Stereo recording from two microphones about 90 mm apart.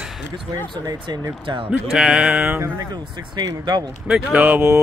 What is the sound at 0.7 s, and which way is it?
Speech, 50° right (ahead or behind).